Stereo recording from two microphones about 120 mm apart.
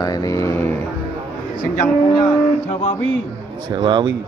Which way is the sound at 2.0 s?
40° left (ahead or behind).